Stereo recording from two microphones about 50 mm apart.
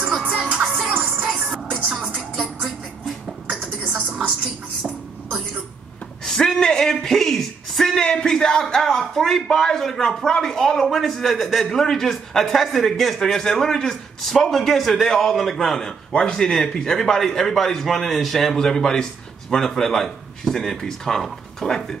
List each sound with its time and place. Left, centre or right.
0.2 s music: right
0.7 s music: centre
0.9 s music: right
3.1 s beatboxing: centre
4.0 s a sound: right
6.2 s a man's voice: centre
16.1 s a man's voice: centre